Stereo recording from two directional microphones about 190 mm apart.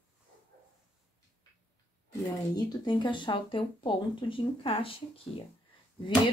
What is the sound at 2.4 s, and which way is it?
Speech, 20° left (ahead or behind).